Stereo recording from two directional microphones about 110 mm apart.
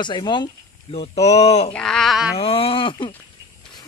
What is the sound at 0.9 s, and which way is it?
Speech, 65° left (ahead or behind).